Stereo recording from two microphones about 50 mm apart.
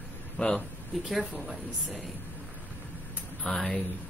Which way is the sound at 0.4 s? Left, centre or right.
Centre.